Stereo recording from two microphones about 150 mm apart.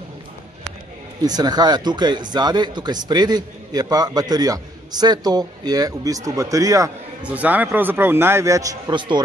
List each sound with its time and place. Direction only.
1.2 s speech: 25° right (ahead or behind)
7.2 s a man's voice: 10° right (ahead or behind); by 9.2 s 30° right (ahead or behind)